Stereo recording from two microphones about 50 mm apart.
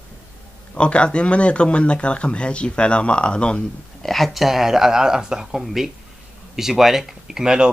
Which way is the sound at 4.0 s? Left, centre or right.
Centre.